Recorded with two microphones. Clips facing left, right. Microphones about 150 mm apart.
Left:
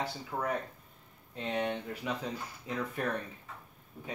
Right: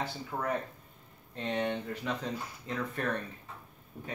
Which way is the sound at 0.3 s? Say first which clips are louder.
Right 1 dB; centre (ahead or behind).